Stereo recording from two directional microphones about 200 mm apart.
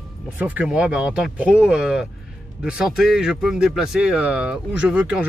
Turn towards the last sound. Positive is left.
turn(degrees=-5)  # may be behind; listen again after turning